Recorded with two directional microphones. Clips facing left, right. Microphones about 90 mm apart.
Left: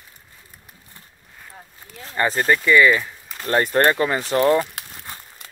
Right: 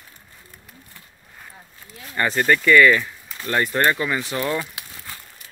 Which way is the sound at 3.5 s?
35° left (ahead or behind).